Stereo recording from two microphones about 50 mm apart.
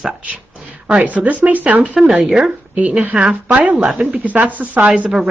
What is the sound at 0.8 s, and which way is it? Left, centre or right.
Speech, right.